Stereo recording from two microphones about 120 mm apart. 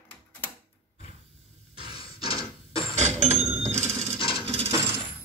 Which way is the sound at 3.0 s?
70° right (ahead or behind).